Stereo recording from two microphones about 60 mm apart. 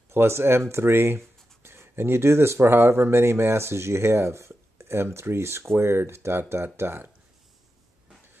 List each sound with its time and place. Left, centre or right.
0.1 s speech: right